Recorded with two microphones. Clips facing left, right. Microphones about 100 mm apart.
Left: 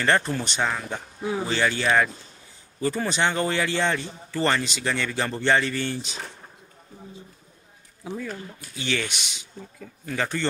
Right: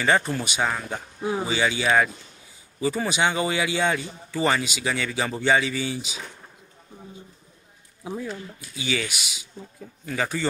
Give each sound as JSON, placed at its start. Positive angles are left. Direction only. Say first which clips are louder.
{"t": 0.0, "sound": "a man's voice", "louder": "even", "side_deg": -5}
{"t": 8.0, "sound": "a man's voice", "louder": "right 1 dB", "side_deg": -15}